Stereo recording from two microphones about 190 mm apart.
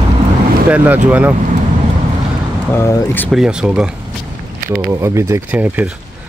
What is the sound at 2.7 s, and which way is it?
Speech, 10° left (ahead or behind).